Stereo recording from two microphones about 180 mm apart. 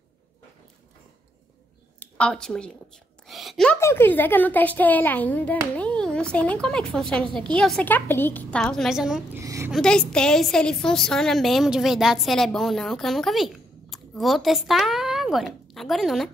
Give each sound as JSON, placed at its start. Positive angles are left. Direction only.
{"t": 2.0, "sound": "a woman's voice", "side_deg": 5}
{"t": 3.3, "sound": "a sound", "side_deg": 0}
{"t": 3.8, "sound": "a child's voice", "side_deg": 10}
{"t": 9.4, "sound": "a woman's voice", "side_deg": -15}
{"t": 9.7, "sound": "a woman's voice", "side_deg": 5}